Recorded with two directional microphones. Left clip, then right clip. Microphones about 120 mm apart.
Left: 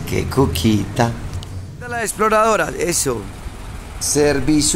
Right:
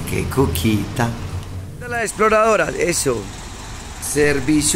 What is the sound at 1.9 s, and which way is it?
Speech, centre (ahead or behind).